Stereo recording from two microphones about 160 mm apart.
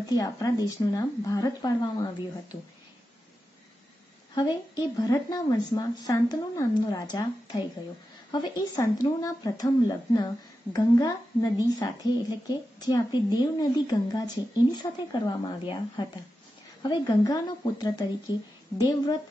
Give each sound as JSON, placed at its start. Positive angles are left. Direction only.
{"t": 0.0, "sound": "speech", "side_deg": 20}
{"t": 4.4, "sound": "speech", "side_deg": 20}